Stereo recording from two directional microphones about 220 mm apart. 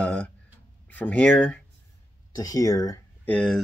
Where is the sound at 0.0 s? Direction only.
5° left (ahead or behind).